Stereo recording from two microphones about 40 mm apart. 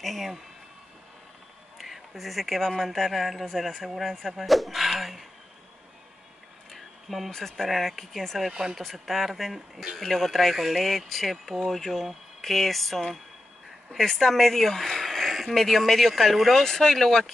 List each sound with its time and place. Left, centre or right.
0.0 s speech: centre
1.8 s a sound: centre
2.8 s speech: centre
6.7 s a sound: centre
7.3 s speech: centre
8.5 s speech: right
8.7 s speech: centre
15.2 s a sound: centre
15.5 s speech: centre
16.9 s speech: centre